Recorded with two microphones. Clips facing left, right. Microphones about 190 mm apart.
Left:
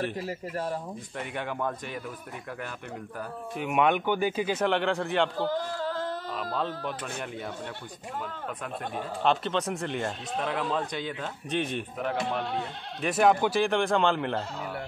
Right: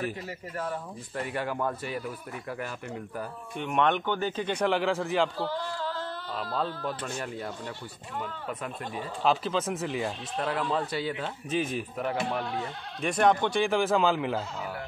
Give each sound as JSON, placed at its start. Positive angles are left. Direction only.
{"t": 0.2, "sound": "speech", "side_deg": 30}
{"t": 1.1, "sound": "speech", "side_deg": 0}
{"t": 3.5, "sound": "speech", "side_deg": 5}
{"t": 5.5, "sound": "a sound", "side_deg": 45}
{"t": 9.2, "sound": "speech", "side_deg": 0}